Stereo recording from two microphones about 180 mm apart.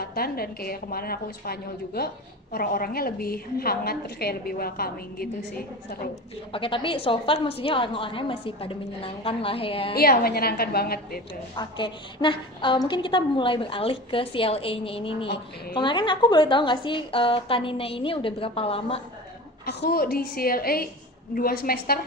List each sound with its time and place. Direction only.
0.0 s a woman's voice: 55° left (ahead or behind)
6.5 s a woman's voice: 30° left (ahead or behind)
9.9 s a woman's voice: 55° left (ahead or behind)
11.5 s a woman's voice: 25° left (ahead or behind)
19.6 s a woman's voice: 70° left (ahead or behind)